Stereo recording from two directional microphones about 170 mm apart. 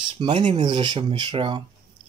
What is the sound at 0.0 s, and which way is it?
Speech, 35° right (ahead or behind).